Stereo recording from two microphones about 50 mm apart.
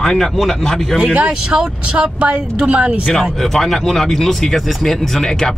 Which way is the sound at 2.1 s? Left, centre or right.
Right.